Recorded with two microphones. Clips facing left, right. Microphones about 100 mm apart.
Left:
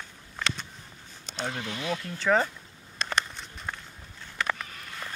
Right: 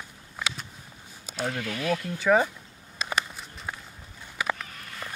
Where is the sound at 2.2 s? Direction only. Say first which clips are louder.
Right 2 dB; 10° right (ahead or behind).